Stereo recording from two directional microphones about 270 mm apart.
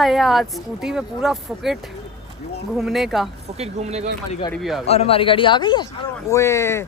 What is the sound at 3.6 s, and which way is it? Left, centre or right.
Speech, right.